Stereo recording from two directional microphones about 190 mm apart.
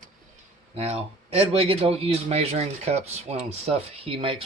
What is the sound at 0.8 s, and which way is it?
Speech, 35° right (ahead or behind).